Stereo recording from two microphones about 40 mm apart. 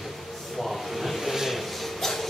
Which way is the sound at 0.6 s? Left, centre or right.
Centre.